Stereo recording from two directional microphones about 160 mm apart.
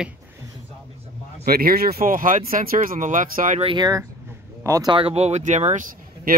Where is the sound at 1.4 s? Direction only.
70° right (ahead or behind).